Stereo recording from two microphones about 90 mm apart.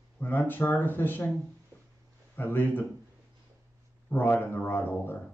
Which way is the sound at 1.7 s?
20° left (ahead or behind).